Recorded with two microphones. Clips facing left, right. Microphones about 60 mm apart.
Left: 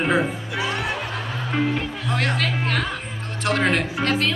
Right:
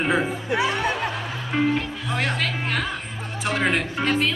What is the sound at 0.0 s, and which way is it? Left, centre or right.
Speech, centre.